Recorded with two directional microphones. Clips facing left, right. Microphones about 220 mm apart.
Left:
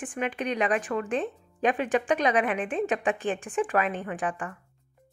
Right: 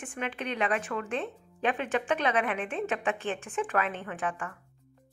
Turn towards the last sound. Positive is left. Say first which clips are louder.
# left 3 dB
turn(degrees=15)  # may be behind; listen again after turning